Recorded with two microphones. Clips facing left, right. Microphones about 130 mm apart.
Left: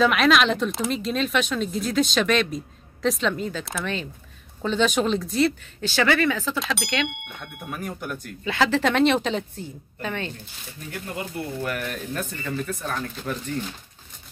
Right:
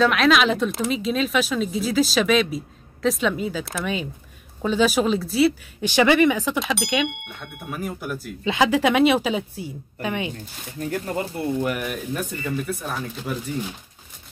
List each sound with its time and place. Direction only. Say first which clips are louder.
0.0 s speech: right 1 dB; centre (ahead or behind); by 6.6 s 15° right (ahead or behind)
6.6 s speech: right 3 dB; centre (ahead or behind)
10.8 s speech: right 7 dB; 40° right (ahead or behind)
11.6 s speech: right 3 dB; 15° right (ahead or behind)